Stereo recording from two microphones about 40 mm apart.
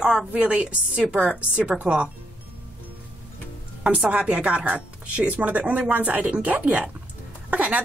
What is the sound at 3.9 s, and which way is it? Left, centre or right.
Speech, right.